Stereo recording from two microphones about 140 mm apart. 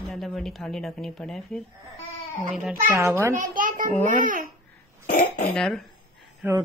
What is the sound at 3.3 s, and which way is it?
A child's voice, 75° right (ahead or behind).